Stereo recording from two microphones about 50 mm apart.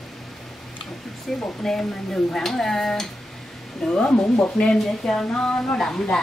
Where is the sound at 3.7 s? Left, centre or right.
Centre.